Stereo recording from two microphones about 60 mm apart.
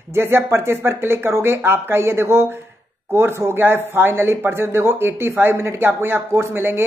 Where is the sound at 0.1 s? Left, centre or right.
Right.